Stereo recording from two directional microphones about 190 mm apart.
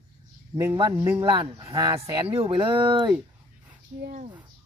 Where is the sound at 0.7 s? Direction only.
25° right (ahead or behind).